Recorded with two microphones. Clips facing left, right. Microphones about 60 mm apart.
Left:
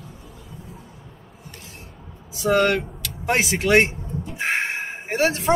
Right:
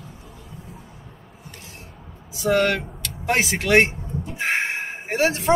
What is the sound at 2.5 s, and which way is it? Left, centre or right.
Speech, centre.